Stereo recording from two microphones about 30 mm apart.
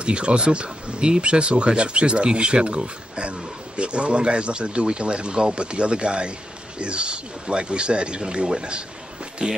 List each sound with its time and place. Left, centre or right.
0.0 s speech: right